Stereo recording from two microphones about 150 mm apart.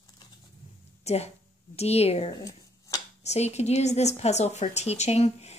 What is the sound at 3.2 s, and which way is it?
Speech, 45° left (ahead or behind).